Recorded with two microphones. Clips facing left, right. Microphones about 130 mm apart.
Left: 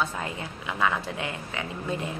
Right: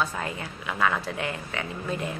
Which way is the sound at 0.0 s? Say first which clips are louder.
Right 1 dB; 20° left (ahead or behind).